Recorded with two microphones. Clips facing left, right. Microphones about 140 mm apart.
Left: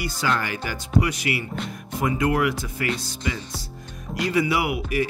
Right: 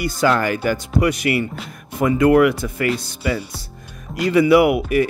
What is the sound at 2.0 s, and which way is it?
Speech, 60° right (ahead or behind).